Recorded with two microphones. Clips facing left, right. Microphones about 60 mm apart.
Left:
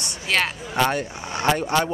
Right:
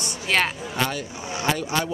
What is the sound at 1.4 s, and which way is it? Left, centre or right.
Speech, left.